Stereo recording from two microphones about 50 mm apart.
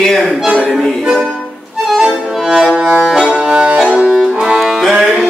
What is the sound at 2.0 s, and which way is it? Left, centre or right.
Music, centre.